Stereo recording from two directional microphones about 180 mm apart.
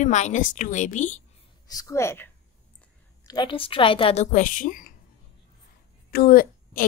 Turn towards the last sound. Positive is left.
turn(degrees=55)  # may be behind; listen again after turning